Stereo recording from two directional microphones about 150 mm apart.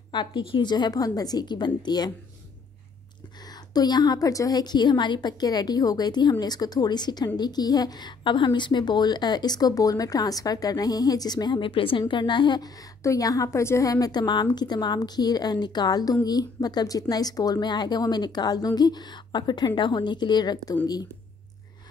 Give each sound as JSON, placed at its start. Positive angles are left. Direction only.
{"t": 0.1, "sound": "a woman's voice", "side_deg": 30}
{"t": 3.7, "sound": "a woman's voice", "side_deg": 25}